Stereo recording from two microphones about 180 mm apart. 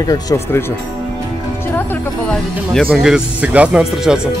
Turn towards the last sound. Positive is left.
turn(degrees=-5)  # may be behind; listen again after turning